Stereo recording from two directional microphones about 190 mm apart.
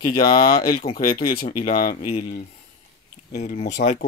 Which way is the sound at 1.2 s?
50° left (ahead or behind).